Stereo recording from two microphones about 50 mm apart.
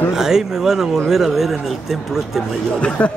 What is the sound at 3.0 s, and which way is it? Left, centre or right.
Speech, left.